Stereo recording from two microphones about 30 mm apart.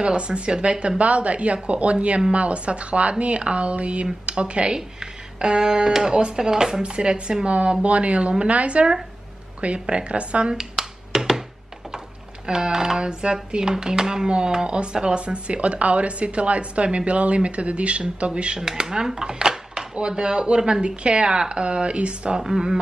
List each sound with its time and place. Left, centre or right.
0.0 s a woman's voice: right
4.7 s speech: right
6.8 s speech: right
10.5 s finger snapping: centre
12.4 s speech: right
18.6 s speech: right
19.5 s a sound: right
20.0 s speech: right
22.4 s speech: centre